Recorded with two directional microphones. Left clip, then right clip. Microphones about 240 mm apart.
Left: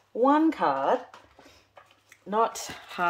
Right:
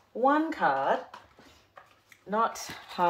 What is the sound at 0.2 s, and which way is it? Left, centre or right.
Speech, left.